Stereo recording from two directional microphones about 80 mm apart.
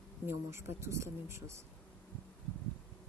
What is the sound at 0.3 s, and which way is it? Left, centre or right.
Speech, right.